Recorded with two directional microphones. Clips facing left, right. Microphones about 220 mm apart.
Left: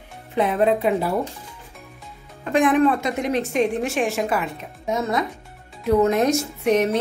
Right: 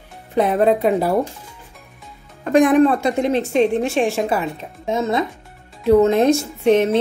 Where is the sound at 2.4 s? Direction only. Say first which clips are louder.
Right 4 dB; 40° right (ahead or behind).